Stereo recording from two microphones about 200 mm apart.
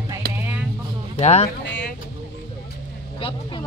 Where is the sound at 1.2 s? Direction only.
30° left (ahead or behind).